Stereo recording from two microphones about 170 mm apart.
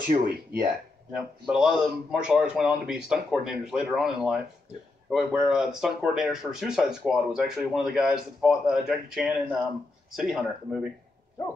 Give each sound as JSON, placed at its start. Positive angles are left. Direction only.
{"t": 0.1, "sound": "speech", "side_deg": -60}
{"t": 1.1, "sound": "speech", "side_deg": 0}